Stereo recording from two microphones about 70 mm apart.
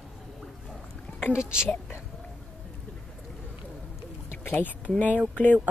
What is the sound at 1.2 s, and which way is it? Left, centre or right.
Speech, centre.